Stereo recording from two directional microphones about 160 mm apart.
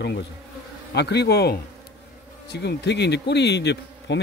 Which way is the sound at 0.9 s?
90° left.